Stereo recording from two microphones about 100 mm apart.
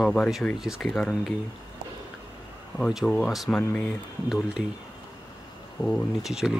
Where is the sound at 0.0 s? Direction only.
5° left (ahead or behind).